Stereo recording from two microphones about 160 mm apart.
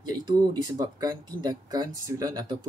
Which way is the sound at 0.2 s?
25° right (ahead or behind).